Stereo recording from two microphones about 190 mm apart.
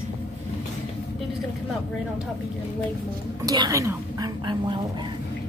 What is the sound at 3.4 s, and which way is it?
Speech, 20° right (ahead or behind).